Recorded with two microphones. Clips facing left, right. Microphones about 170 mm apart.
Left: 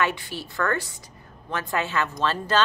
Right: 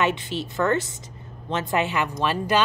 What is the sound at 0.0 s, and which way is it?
Speech, 20° right (ahead or behind).